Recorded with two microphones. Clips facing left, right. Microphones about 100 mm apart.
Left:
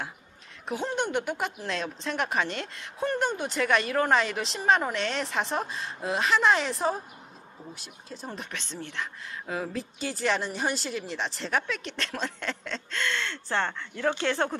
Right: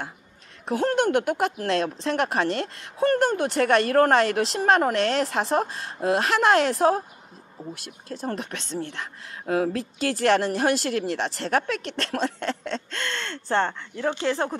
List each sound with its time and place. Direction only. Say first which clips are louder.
0.7 s speech: right 7 dB; 80° right
1.4 s speech: right 8 dB; 65° right (ahead or behind); by 2.7 s 45° right (ahead or behind)
3.0 s speech: right 7 dB; 70° right (ahead or behind)
7.7 s speech: right 6 dB; 80° right
8.5 s speech: right 7 dB; 45° right (ahead or behind)
9.5 s speech: right 9 dB; 60° right (ahead or behind); by 14.5 s 25° right (ahead or behind)